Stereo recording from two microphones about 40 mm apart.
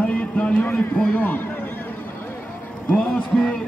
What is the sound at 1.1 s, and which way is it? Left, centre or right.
Speech, left.